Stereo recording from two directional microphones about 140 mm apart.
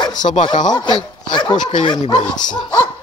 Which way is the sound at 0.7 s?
30° left (ahead or behind).